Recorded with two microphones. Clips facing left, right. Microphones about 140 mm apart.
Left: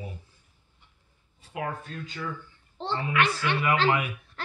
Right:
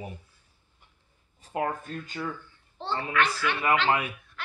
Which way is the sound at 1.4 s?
40° right (ahead or behind).